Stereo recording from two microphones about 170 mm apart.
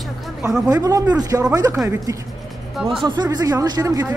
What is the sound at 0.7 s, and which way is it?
Speech, 20° right (ahead or behind).